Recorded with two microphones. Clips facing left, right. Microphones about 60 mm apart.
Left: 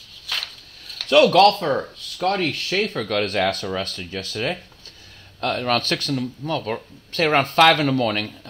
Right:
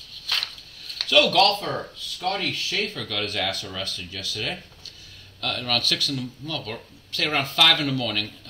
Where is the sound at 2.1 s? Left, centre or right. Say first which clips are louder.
Left 5 dB; left.